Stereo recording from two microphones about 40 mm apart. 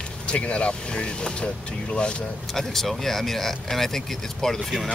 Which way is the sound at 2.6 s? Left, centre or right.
Centre.